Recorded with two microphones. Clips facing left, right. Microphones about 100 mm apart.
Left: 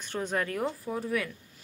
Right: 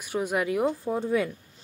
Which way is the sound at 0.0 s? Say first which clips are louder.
Right 4 dB; 10° right (ahead or behind).